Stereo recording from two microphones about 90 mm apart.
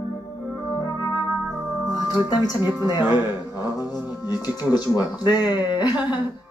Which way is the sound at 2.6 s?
25° right (ahead or behind).